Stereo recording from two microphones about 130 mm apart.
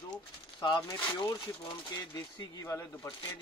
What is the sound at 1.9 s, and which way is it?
Speech, 25° left (ahead or behind).